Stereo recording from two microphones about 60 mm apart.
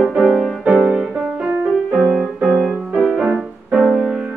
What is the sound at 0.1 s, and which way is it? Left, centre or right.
Music, centre.